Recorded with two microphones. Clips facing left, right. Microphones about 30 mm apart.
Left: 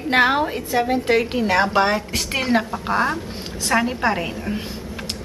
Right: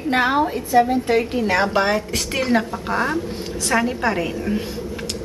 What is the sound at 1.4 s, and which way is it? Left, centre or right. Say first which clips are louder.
A woman's voice: left 1 dB; centre.